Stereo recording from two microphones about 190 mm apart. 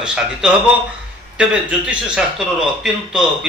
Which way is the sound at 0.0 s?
5° right (ahead or behind).